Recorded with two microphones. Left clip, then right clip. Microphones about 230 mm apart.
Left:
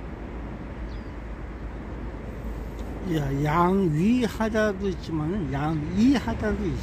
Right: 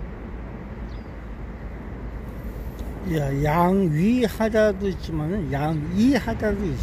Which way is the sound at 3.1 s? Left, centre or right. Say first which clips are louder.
Right 2 dB; right.